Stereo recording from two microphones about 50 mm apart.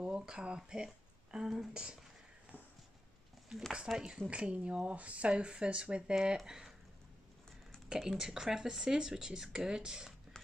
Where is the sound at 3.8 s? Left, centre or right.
Centre.